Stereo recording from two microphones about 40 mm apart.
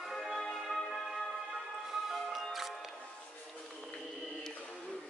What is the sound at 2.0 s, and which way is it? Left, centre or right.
Music, centre.